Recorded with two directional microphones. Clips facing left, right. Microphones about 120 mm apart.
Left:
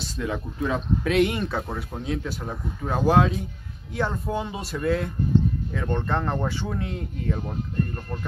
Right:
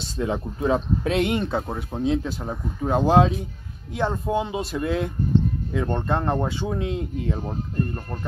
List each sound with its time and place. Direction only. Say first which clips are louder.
0.0 s speech: right 3 dB; 30° right (ahead or behind)